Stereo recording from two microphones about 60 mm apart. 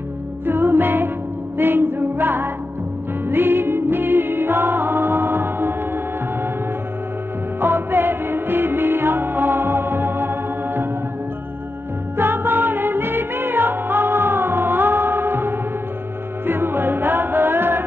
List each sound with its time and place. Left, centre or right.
0.5 s music: right
7.6 s music: right
12.2 s music: right